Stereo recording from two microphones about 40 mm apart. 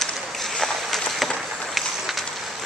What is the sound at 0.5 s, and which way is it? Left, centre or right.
Run, centre.